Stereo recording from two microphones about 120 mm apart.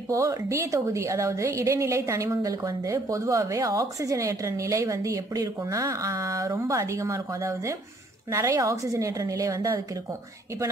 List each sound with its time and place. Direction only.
0.1 s a woman's voice: 25° right (ahead or behind)